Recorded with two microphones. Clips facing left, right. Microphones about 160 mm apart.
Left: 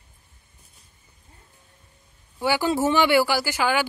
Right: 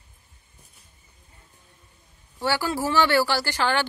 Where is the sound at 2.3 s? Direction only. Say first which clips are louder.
Left 3 dB; 15° left (ahead or behind).